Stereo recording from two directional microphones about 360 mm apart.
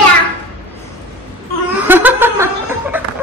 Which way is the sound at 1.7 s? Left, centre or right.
Centre.